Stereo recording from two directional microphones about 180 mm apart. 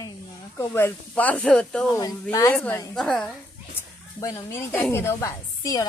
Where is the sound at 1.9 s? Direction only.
20° left (ahead or behind).